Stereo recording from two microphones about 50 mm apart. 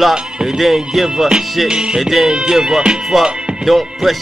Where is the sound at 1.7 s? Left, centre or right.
Centre.